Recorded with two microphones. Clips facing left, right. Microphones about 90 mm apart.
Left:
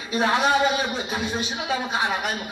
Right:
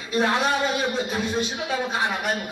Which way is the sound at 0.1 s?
15° left (ahead or behind).